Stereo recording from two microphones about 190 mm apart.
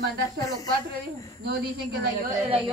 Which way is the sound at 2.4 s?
25° right (ahead or behind).